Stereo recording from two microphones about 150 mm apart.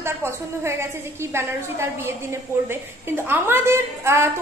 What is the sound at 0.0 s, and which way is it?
A woman's voice, 15° right (ahead or behind).